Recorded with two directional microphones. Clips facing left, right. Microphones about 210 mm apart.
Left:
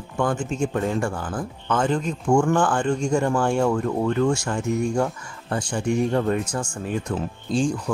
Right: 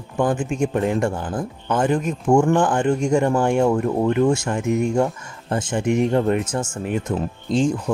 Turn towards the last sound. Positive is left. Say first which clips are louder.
# right 3 dB
turn(degrees=-20)  # may be behind; listen again after turning